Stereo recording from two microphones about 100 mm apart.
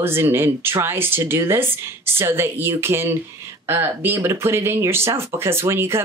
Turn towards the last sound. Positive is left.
turn(degrees=-25)  # may be behind; listen again after turning